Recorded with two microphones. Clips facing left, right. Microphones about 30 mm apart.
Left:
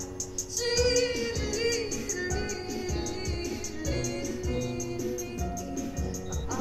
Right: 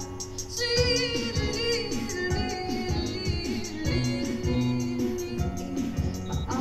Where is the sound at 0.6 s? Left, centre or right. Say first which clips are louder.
Even; right.